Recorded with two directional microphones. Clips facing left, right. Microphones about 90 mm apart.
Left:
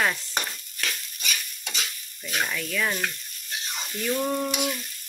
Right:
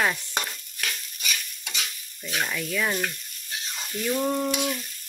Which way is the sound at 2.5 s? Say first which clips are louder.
Right 1 dB; 10° right (ahead or behind).